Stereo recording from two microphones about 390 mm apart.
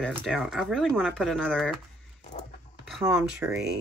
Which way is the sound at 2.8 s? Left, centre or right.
Centre.